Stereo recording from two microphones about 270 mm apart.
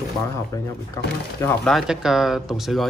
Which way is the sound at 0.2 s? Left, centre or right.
Centre.